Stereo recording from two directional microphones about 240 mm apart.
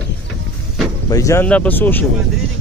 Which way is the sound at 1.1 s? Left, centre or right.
Centre.